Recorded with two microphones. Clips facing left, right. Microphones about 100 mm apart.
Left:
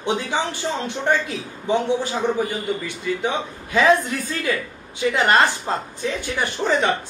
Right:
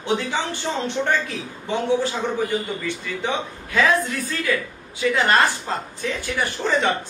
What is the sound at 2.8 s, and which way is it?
Speech, 15° left (ahead or behind).